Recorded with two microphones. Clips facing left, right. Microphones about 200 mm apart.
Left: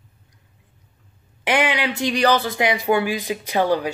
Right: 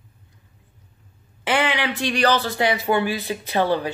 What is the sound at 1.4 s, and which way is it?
A woman's voice, 15° left (ahead or behind).